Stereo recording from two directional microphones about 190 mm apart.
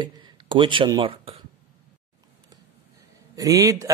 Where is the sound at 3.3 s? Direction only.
20° right (ahead or behind).